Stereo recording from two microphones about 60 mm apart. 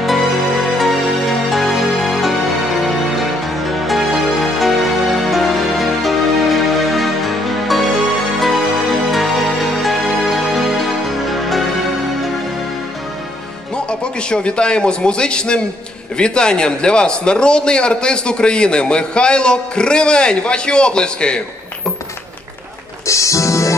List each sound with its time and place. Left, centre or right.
0.0 s music: centre
13.7 s a man's voice: centre
23.0 s music: left